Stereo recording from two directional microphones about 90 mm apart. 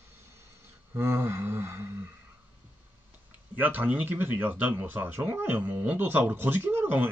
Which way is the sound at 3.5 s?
20° right (ahead or behind).